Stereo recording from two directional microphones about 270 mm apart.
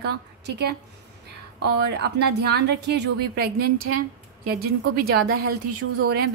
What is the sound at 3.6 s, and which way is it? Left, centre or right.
Speech, right.